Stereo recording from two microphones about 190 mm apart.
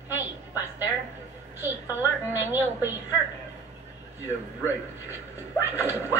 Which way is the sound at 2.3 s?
10° right (ahead or behind).